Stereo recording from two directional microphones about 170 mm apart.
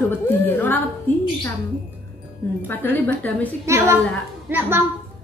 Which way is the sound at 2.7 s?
10° left (ahead or behind).